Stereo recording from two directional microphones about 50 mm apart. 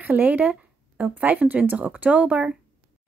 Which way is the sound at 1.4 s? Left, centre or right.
Right.